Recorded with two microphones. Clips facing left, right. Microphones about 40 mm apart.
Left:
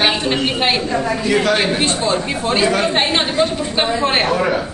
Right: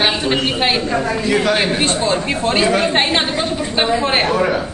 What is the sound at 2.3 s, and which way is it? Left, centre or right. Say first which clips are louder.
A woman's voice: right 2 dB; centre.